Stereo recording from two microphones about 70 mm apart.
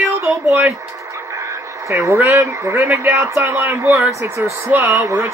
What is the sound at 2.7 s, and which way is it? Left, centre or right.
Speech, right.